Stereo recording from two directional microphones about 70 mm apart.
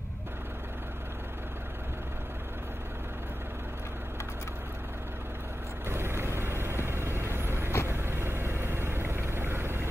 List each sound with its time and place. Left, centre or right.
5.9 s vehicle: right